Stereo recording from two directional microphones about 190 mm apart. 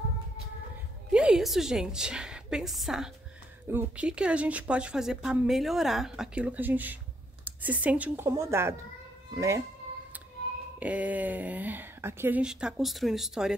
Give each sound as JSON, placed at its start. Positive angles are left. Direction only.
{"t": 1.1, "sound": "a woman's voice", "side_deg": -5}
{"t": 10.8, "sound": "speech", "side_deg": -10}